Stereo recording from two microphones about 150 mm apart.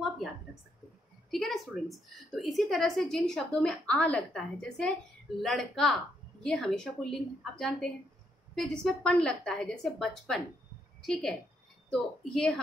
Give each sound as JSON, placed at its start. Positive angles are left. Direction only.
{"t": 1.3, "sound": "a woman's voice", "side_deg": 0}